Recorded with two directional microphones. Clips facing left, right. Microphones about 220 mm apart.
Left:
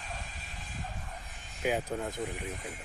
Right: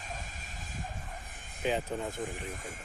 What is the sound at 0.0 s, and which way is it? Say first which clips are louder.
Bow-wow: even; 45° right (ahead or behind).